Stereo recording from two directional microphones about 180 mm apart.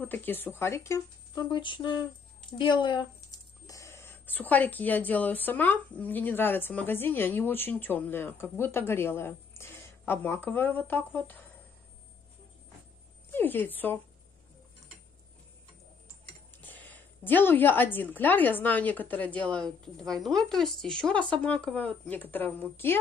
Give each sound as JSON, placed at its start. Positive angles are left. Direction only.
{"t": 0.0, "sound": "speech", "side_deg": 10}
{"t": 13.3, "sound": "a woman's voice", "side_deg": 10}
{"t": 16.6, "sound": "speech", "side_deg": 10}